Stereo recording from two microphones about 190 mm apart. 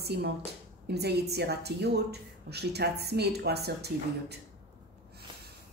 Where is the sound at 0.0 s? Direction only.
60° right (ahead or behind).